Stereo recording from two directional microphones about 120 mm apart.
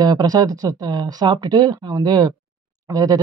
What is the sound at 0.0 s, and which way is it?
Speech, 35° right (ahead or behind).